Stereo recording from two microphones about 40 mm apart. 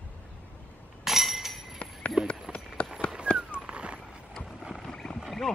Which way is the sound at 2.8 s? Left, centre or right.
Left.